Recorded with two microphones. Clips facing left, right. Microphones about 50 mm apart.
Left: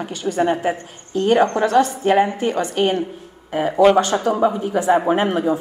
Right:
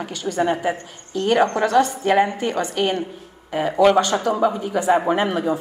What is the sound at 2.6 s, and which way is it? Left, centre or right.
Speech, left.